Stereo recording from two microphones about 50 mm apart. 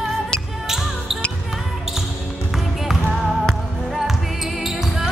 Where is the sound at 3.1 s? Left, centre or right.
Centre.